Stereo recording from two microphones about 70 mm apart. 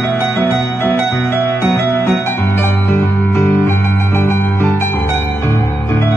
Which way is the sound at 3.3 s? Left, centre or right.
Left.